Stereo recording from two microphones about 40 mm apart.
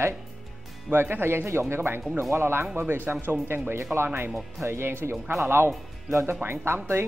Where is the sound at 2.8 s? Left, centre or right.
Right.